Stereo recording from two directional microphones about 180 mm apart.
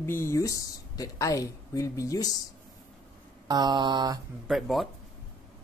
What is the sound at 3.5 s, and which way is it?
Mantra, 25° right (ahead or behind).